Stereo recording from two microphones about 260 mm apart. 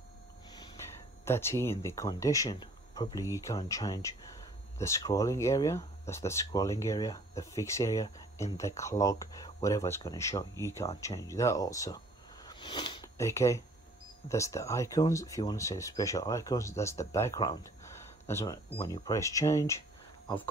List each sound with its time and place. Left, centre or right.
0.8 s a sound: centre
1.2 s speech: centre
12.4 s sniff: centre
14.3 s speech: centre